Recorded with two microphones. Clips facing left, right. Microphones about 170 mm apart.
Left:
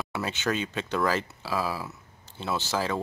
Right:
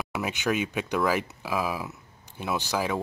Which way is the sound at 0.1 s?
15° right (ahead or behind).